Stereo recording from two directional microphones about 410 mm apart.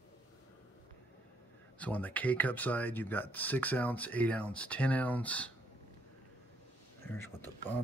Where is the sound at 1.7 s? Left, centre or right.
Centre.